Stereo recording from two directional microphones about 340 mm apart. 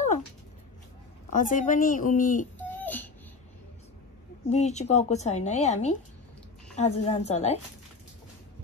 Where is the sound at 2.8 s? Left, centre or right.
Centre.